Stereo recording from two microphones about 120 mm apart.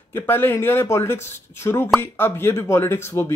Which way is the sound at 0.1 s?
20° left (ahead or behind).